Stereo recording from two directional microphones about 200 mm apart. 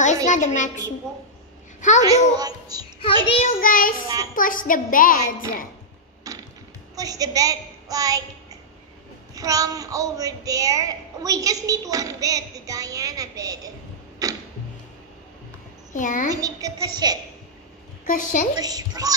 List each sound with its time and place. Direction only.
0.0 s a woman's voice: 35° left (ahead or behind)
2.0 s a woman's voice: 20° right (ahead or behind)
3.4 s a woman's voice: 45° left (ahead or behind)
6.3 s a sound: 15° right (ahead or behind)
7.0 s a woman's voice: 15° right (ahead or behind)
9.3 s a woman's voice: 15° right (ahead or behind)
15.9 s a woman's voice: 40° left (ahead or behind)
16.3 s a woman's voice: 15° right (ahead or behind)
18.0 s a woman's voice: 40° left (ahead or behind)
18.6 s a woman's voice: 20° right (ahead or behind)